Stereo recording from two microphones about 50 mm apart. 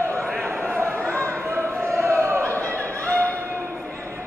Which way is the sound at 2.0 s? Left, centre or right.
Right.